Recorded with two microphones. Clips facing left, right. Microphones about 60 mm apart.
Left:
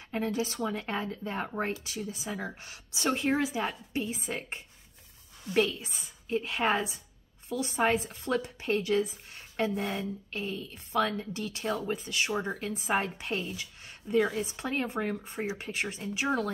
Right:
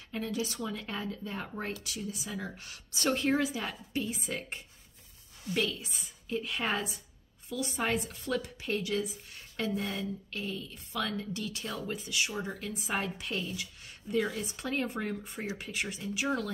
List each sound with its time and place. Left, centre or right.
0.1 s a woman's voice: left